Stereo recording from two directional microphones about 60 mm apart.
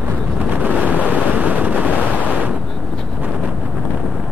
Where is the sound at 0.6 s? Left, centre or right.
Right.